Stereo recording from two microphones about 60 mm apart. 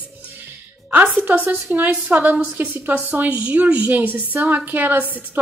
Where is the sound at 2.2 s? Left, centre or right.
Right.